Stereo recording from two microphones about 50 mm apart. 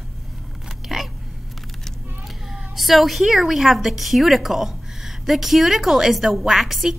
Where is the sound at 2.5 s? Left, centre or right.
Centre.